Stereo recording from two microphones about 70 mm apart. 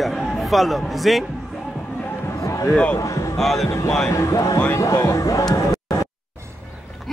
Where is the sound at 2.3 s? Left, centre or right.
Left.